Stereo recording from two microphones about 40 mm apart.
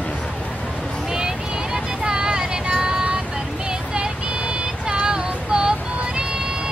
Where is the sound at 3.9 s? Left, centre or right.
Right.